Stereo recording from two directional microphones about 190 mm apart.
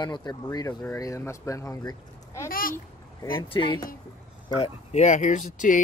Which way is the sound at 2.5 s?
50° left (ahead or behind).